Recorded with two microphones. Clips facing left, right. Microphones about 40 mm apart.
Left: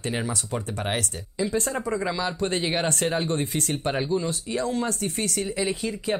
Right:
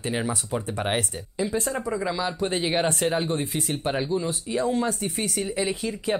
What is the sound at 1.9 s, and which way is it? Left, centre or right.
Speech, centre.